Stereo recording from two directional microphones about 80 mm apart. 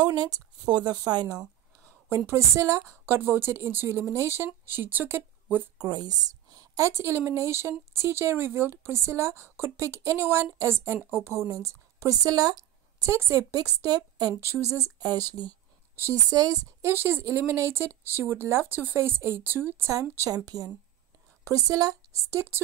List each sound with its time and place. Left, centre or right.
0.0 s speech: right
2.0 s speech: right
2.8 s speech: right
4.6 s speech: right
5.8 s speech: right
13.0 s speech: right
13.6 s a woman's voice: right
14.6 s a woman's voice: right
15.0 s a woman's voice: right
16.8 s speech: right
19.9 s a woman's voice: right